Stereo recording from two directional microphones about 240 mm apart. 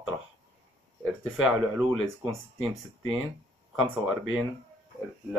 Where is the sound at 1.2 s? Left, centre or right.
Centre.